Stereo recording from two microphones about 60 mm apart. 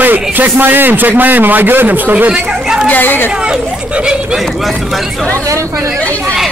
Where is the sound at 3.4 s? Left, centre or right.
Centre.